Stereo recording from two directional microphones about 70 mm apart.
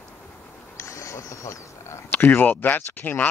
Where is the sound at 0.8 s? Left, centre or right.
Left.